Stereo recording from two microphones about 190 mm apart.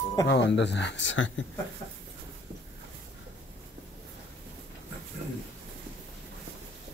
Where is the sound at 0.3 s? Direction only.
65° left (ahead or behind).